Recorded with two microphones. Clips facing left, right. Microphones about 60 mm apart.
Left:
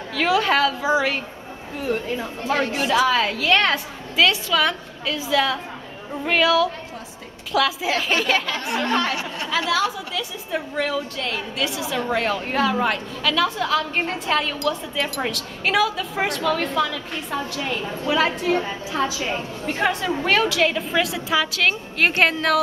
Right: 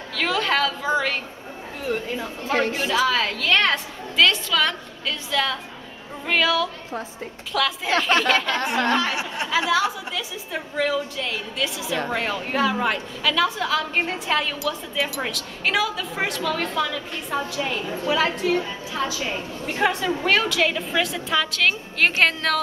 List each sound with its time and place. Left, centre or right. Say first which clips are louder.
0.1 s a woman's voice: left 3 dB; centre
2.5 s speech: even; right
2.9 s a woman's voice: left 5 dB; centre
9.1 s a woman's voice: right 1 dB; centre
18.6 s a woman's voice: left 3 dB; centre